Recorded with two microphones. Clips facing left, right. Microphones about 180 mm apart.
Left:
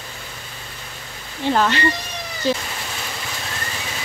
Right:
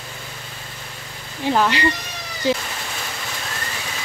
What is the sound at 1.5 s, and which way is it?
Speech, 15° right (ahead or behind).